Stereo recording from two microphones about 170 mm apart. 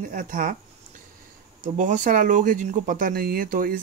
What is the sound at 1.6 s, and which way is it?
Speech, 50° right (ahead or behind).